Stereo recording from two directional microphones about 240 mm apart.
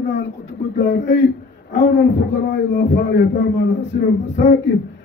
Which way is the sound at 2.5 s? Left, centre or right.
Left.